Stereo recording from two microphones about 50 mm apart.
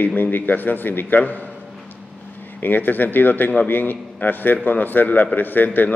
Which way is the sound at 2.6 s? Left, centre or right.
Left.